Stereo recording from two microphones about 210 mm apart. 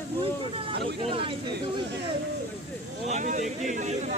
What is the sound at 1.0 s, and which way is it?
Speech, 25° right (ahead or behind).